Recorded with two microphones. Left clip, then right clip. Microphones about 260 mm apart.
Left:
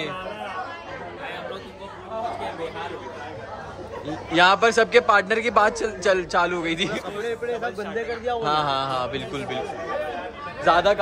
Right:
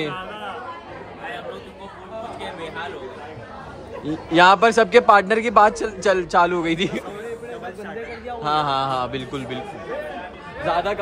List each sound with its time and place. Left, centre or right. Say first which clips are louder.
4.0 s a man's voice: right 4 dB; centre
8.4 s a man's voice: right 4 dB; centre
10.6 s speech: left 4 dB; left